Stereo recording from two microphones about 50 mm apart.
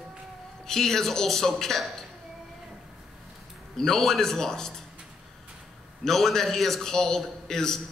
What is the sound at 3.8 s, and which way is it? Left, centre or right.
Speech, centre.